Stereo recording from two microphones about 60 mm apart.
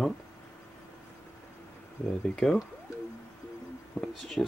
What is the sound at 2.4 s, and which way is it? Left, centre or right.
Speech, centre.